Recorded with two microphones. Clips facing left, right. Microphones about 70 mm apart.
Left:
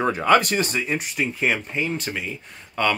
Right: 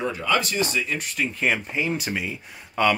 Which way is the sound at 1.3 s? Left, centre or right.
Centre.